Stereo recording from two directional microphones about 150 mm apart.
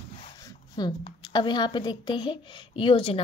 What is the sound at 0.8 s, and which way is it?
A woman's voice, 25° left (ahead or behind).